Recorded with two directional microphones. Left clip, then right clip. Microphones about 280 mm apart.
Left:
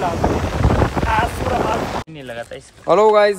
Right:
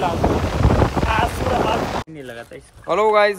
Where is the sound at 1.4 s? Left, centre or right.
Centre.